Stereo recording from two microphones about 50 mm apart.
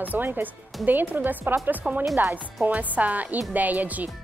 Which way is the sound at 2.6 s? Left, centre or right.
Right.